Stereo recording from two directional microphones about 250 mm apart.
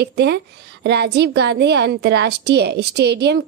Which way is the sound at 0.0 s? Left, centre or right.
Right.